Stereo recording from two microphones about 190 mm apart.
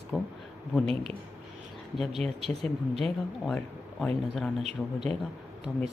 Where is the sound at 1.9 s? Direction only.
Centre (ahead or behind).